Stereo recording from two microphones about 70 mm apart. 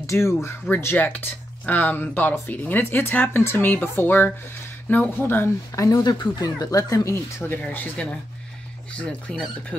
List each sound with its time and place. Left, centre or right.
0.0 s speech: left
5.8 s speech: left
7.7 s speech: left
9.3 s speech: centre